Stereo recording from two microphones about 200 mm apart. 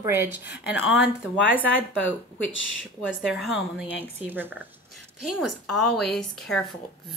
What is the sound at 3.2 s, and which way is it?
A woman's voice, centre (ahead or behind).